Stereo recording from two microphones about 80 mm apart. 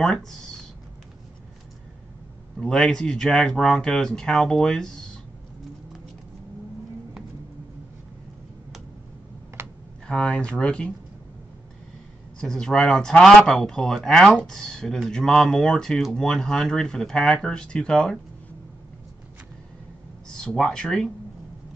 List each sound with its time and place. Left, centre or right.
0.0 s speech: centre
2.6 s speech: centre
9.6 s computer keyboard: right
10.0 s speech: centre
12.4 s speech: centre
20.2 s speech: centre